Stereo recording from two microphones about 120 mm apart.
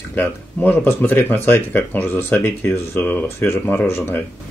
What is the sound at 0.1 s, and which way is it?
Speech, 15° left (ahead or behind).